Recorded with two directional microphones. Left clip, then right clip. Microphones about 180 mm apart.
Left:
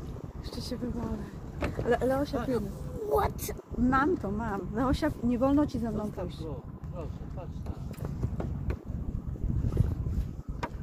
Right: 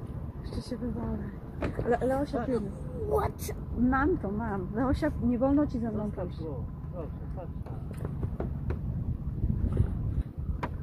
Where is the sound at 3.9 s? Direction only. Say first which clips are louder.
Left 2 dB; 10° left (ahead or behind).